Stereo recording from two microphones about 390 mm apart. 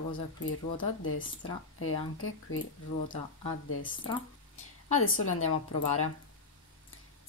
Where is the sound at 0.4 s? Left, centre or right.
Left.